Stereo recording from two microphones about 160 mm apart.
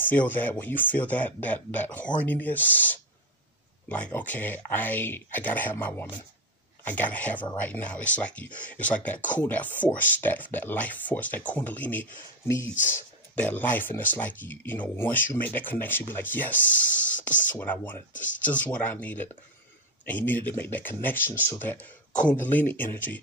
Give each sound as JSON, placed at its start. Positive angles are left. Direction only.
{"t": 0.1, "sound": "speech", "side_deg": 10}
{"t": 17.3, "sound": "speech", "side_deg": 55}
{"t": 17.6, "sound": "speech", "side_deg": 10}